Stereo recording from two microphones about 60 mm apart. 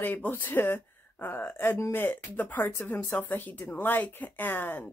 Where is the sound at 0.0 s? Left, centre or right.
Left.